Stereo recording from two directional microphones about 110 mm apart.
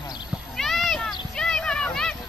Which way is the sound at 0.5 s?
Centre (ahead or behind).